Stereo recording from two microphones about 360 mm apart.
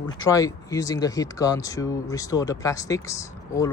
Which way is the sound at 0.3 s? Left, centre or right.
Centre.